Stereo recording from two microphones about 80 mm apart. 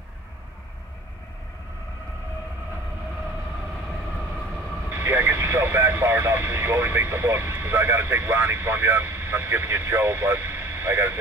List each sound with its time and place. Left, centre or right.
4.9 s speech: right